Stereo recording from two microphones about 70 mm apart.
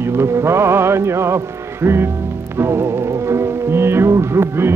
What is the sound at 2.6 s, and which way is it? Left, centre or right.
Music, right.